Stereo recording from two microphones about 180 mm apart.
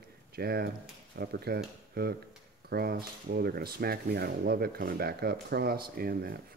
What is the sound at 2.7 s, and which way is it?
Speech, 60° right (ahead or behind).